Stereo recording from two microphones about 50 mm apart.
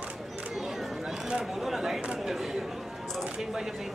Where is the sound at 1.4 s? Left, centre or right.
Centre.